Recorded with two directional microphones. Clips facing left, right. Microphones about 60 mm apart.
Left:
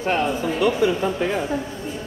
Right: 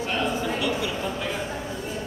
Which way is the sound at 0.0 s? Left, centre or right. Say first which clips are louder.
Left 4 dB; left.